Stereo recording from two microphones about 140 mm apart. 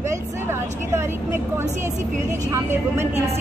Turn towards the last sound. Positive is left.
turn(degrees=-20)  # may be behind; listen again after turning